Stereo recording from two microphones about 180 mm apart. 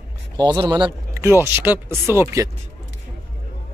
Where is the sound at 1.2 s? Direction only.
15° right (ahead or behind).